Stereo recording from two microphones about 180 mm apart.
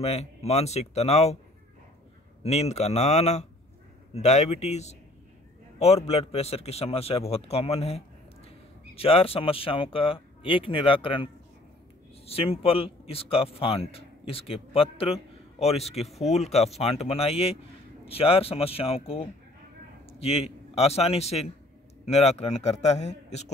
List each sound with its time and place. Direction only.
0.0 s speech: 35° left (ahead or behind)
2.4 s speech: 35° left (ahead or behind)
12.3 s a man's voice: 30° left (ahead or behind)